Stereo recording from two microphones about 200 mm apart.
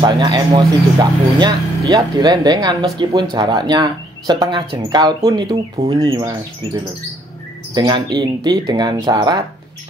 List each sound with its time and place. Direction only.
0.0 s speech: 20° right (ahead or behind)